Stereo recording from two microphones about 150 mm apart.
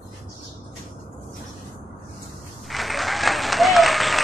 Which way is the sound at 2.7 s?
Centre (ahead or behind).